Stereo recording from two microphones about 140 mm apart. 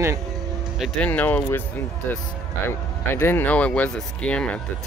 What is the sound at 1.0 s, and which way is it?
Speech, 10° left (ahead or behind).